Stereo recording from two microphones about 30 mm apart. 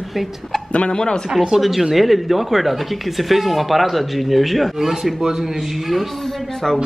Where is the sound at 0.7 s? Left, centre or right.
Left.